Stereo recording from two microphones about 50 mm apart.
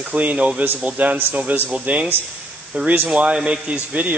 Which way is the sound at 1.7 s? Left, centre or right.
Right.